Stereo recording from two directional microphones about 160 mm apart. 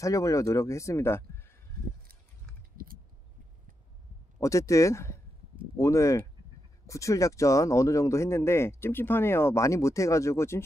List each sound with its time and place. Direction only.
0.0 s speech: 20° left (ahead or behind)
2.8 s a sound: 65° right (ahead or behind)
4.4 s speech: 20° left (ahead or behind)